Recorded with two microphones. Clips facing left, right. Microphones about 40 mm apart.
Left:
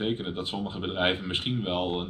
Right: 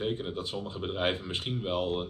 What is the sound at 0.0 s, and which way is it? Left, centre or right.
Speech, left.